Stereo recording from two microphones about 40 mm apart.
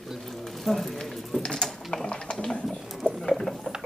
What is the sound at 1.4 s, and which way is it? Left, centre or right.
Mechanisms, centre.